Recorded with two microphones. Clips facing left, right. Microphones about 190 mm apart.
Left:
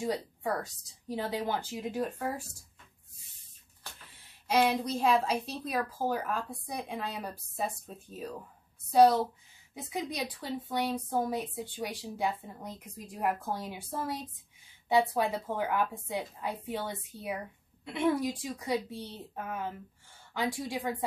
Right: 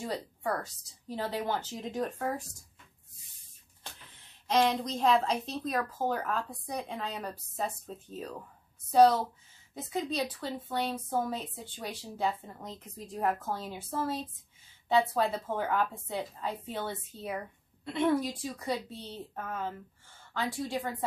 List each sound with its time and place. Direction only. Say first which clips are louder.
0.0 s a woman's voice: left 2 dB; 15° left (ahead or behind)
4.5 s a woman's voice: even; 10° left (ahead or behind)